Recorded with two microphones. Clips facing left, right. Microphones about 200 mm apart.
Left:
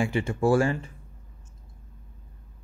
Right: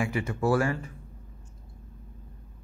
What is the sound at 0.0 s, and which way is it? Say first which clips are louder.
Speech: left 3 dB; 30° left (ahead or behind).